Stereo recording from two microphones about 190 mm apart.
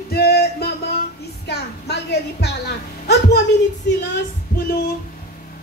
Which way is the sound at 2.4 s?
60° left (ahead or behind).